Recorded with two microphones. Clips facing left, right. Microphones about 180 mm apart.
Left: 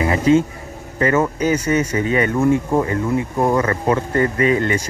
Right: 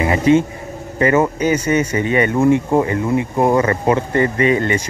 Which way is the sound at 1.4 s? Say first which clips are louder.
Right 1 dB; centre (ahead or behind).